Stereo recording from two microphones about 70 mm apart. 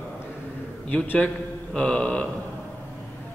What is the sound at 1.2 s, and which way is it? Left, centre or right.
Speech, centre.